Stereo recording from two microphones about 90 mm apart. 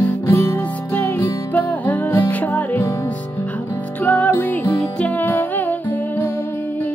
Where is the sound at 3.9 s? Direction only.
20° left (ahead or behind).